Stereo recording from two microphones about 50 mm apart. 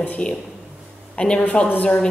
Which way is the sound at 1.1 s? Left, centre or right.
Centre.